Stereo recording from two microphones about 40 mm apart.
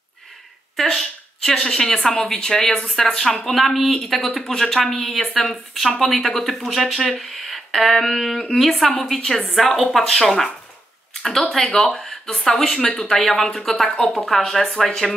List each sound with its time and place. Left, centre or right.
0.7 s a woman's voice: centre
3.4 s speech: centre
8.7 s a woman's voice: left
9.0 s speech: centre